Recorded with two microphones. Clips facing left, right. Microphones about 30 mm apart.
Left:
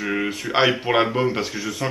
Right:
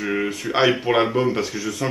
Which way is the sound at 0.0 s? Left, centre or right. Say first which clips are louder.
Right 1 dB; centre.